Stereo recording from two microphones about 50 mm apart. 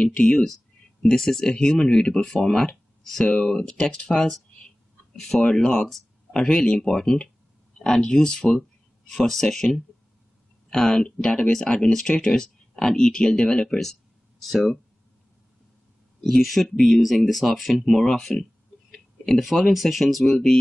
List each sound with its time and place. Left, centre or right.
0.0 s speech: left
1.0 s speech: centre
5.4 s speech: centre
16.3 s speech: centre
18.9 s a sound: centre
19.7 s speech: centre